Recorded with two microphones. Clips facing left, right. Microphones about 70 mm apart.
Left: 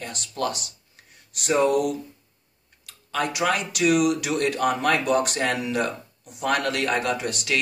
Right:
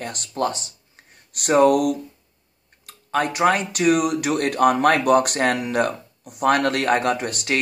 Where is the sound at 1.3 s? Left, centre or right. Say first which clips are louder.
Right 5 dB; right.